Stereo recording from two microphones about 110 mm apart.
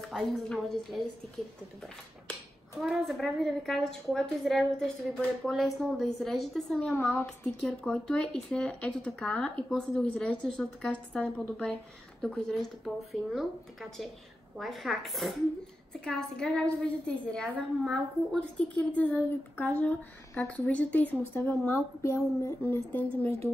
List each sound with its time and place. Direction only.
0.1 s a woman's voice: centre (ahead or behind)
2.8 s a woman's voice: centre (ahead or behind)
7.0 s speech: 25° left (ahead or behind)
7.4 s a woman's voice: 5° left (ahead or behind)
23.2 s a woman's voice: 60° right (ahead or behind)